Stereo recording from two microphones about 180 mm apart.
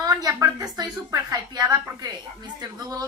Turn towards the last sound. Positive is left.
turn(degrees=-20)  # may be behind; listen again after turning